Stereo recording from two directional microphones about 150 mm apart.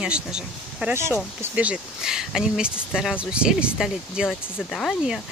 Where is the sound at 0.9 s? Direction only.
15° right (ahead or behind).